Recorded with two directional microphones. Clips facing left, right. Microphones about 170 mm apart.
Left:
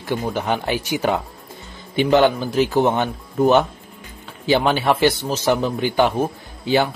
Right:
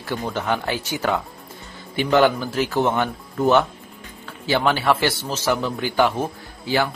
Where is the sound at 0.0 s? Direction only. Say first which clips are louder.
Left 3 dB; 15° left (ahead or behind).